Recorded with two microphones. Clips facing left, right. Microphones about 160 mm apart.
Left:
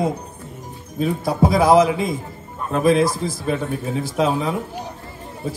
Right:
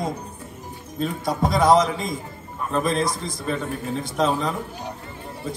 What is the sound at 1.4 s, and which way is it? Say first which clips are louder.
A man's voice: left 4 dB; 5° left (ahead or behind).